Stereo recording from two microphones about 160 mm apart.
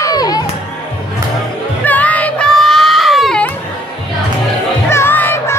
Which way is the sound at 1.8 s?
10° left (ahead or behind).